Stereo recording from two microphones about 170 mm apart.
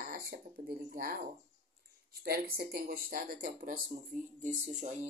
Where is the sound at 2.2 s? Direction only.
65° right (ahead or behind).